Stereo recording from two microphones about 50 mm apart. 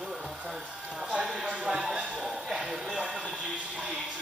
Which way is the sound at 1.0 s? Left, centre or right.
Centre.